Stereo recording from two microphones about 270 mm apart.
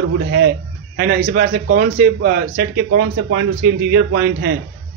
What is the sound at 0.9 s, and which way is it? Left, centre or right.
A man's voice, right.